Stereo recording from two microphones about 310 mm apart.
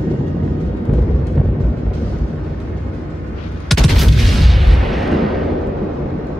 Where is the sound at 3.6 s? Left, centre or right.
Centre.